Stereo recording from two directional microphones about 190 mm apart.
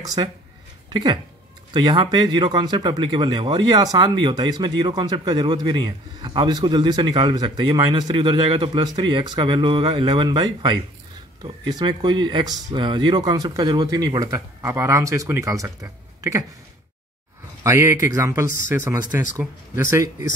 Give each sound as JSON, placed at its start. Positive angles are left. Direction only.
{"t": 0.0, "sound": "speech", "side_deg": -20}
{"t": 17.6, "sound": "speech", "side_deg": -15}